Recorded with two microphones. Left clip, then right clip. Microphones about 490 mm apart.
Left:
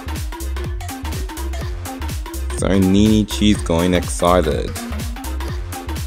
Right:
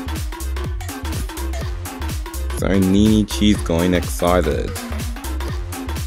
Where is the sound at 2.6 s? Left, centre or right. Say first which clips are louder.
Left 1 dB; right.